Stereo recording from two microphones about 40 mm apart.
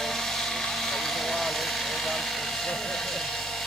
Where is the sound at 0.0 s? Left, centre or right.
Centre.